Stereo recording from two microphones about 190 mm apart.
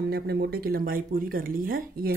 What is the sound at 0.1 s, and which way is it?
Speech, 60° right (ahead or behind).